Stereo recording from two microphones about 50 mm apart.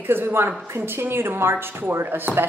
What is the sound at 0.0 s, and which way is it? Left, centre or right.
Speech, right.